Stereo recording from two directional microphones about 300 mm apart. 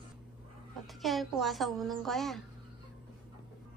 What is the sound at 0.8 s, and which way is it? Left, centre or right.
A woman's voice, centre.